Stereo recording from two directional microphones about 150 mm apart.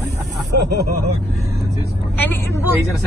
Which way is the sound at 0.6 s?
90° right.